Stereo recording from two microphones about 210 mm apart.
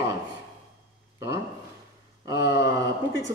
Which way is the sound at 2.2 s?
15° right (ahead or behind).